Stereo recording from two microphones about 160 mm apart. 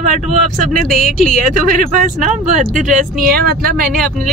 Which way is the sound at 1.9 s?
50° right (ahead or behind).